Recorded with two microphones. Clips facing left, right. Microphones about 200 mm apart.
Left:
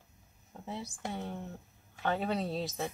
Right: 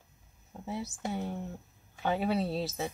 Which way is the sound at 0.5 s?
5° right (ahead or behind).